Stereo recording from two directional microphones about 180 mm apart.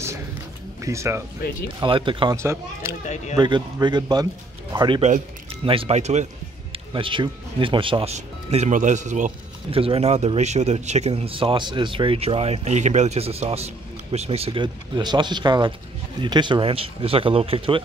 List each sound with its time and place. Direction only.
0.8 s speech: 15° right (ahead or behind)
1.8 s speech: 30° right (ahead or behind)
2.3 s speech: 15° right (ahead or behind); by 6.2 s 40° right (ahead or behind)
6.7 s speech: 30° right (ahead or behind)
9.7 s speech: 30° right (ahead or behind)